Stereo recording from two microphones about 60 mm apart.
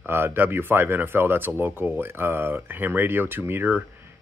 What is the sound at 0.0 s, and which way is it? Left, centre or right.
Speech, right.